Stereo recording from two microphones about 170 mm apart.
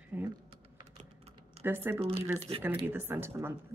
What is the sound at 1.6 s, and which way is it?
Speech, 15° right (ahead or behind).